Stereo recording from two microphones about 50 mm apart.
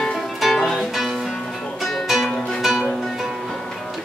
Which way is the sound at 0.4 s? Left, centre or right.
Centre.